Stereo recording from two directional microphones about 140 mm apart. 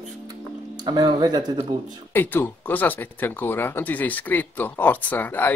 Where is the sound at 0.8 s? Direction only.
30° right (ahead or behind).